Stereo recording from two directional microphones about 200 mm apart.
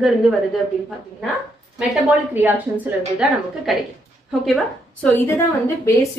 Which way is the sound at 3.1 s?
Centre (ahead or behind).